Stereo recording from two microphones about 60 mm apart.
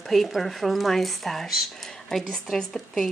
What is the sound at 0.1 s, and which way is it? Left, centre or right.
Speech, centre.